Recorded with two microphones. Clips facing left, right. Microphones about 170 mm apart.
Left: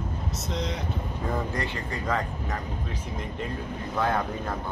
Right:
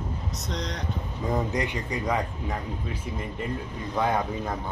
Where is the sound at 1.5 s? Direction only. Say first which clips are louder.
Right 3 dB; 15° right (ahead or behind).